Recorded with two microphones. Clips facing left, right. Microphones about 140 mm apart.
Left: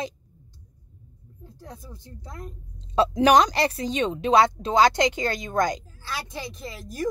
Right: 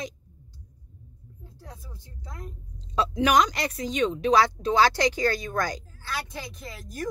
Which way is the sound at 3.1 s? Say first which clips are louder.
Left 4 dB; 30° left (ahead or behind).